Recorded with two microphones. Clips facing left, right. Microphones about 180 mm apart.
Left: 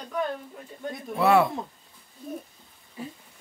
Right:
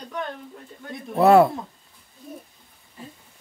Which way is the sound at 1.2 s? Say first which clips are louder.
Right 6 dB; 45° right (ahead or behind).